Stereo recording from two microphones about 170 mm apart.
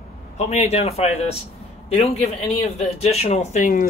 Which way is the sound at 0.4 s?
40° left (ahead or behind).